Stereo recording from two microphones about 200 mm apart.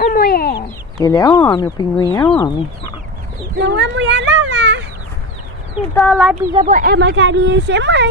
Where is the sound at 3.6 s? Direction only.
65° right (ahead or behind).